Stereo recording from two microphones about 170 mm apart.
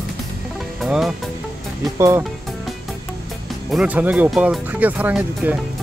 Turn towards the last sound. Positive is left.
turn(degrees=-10)  # may be behind; listen again after turning